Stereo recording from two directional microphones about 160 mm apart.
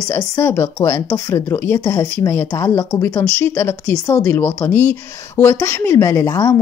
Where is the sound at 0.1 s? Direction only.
15° left (ahead or behind).